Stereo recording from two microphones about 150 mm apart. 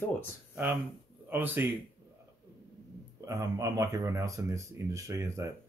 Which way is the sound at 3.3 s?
20° right (ahead or behind).